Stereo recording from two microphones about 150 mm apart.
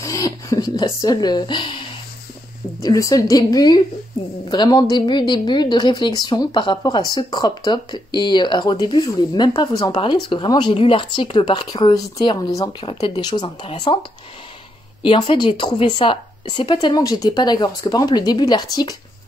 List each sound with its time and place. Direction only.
0.0 s a woman's voice: 20° left (ahead or behind)
2.8 s a woman's voice: 20° left (ahead or behind)
15.0 s a woman's voice: 35° left (ahead or behind)